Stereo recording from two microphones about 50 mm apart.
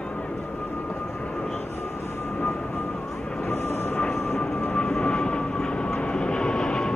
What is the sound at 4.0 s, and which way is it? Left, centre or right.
Vehicle, centre.